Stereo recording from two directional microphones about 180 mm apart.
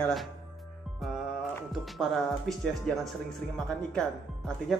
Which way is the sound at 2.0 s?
Centre (ahead or behind).